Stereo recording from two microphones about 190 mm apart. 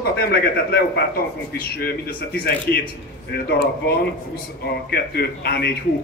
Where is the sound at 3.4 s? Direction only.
60° left (ahead or behind).